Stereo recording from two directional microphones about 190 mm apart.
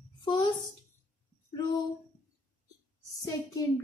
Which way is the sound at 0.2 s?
25° left (ahead or behind).